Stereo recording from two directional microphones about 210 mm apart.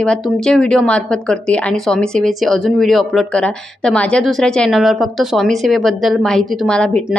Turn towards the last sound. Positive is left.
turn(degrees=5)  # may be behind; listen again after turning